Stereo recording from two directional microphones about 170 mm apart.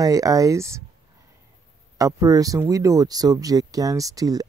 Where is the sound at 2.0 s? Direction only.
20° right (ahead or behind).